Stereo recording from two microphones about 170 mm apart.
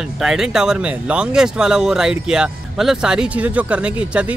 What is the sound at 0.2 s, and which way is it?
Speech, 5° right (ahead or behind).